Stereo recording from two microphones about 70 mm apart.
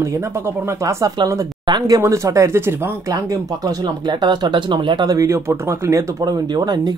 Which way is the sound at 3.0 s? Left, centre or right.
Right.